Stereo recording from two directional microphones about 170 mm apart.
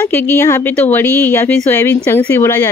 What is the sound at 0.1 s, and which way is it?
Speech, 15° left (ahead or behind).